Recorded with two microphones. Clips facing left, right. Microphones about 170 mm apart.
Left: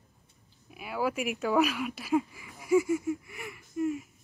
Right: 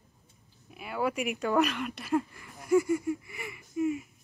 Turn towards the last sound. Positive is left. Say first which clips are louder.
# right 1 dB
turn(degrees=0)  # may be behind; listen again after turning